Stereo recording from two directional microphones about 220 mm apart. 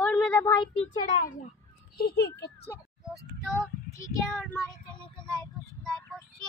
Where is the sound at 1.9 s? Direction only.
45° left (ahead or behind).